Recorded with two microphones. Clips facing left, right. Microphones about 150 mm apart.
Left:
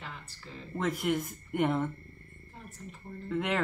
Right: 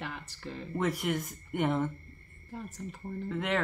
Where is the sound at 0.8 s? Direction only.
Centre (ahead or behind).